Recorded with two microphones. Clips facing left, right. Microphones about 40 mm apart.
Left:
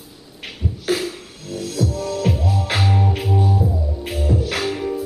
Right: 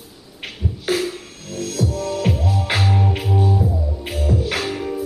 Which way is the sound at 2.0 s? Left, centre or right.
Centre.